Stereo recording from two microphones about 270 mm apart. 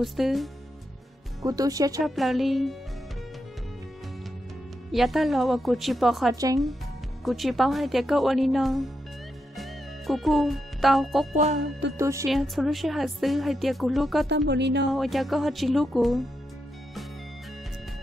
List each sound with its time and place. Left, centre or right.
0.0 s speech: centre
1.4 s speech: centre
2.0 s speech: centre
4.9 s speech: centre
6.3 s speech: centre
7.2 s speech: centre
9.6 s music: centre
12.0 s speech: centre
12.3 s speech: centre
14.3 s speech: right
14.9 s speech: centre